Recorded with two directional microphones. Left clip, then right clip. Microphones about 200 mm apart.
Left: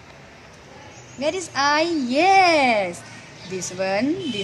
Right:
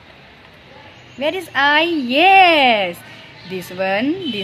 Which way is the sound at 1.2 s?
35° right (ahead or behind).